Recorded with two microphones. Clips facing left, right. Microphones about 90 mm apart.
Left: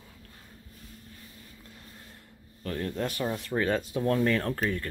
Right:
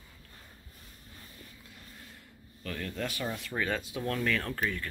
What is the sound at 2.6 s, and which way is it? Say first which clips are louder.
Speech: left 5 dB; 35° left (ahead or behind).